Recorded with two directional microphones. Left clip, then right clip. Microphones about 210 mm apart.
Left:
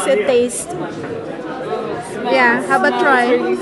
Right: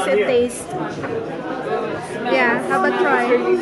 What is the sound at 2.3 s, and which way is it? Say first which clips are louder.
A woman's voice: left 4 dB; 15° left (ahead or behind).